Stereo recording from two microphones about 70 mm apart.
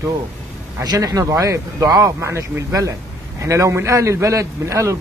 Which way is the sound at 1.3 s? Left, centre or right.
Right.